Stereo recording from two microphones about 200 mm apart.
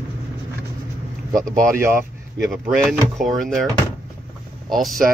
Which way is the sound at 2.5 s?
Centre (ahead or behind).